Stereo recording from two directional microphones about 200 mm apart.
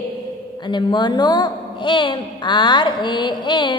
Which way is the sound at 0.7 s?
20° left (ahead or behind).